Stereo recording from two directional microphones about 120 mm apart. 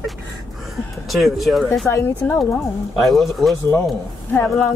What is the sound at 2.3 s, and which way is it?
Speech, centre (ahead or behind).